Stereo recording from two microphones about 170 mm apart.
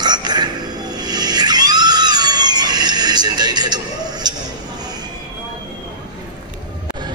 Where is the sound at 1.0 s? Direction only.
25° right (ahead or behind).